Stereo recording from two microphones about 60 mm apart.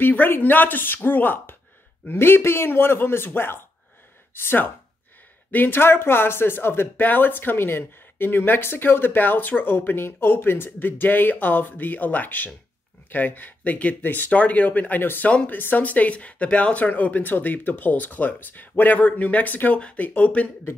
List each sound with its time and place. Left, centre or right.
0.0 s speech: left